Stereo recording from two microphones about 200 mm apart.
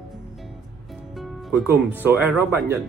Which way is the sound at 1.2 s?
5° right (ahead or behind).